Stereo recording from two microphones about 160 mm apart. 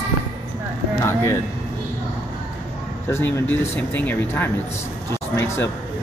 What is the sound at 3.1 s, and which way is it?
Speech, 15° left (ahead or behind).